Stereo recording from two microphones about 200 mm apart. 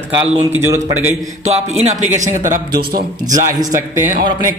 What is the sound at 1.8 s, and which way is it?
Speech, 35° right (ahead or behind).